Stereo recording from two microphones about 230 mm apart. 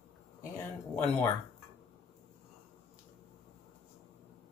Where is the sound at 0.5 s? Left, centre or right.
Centre.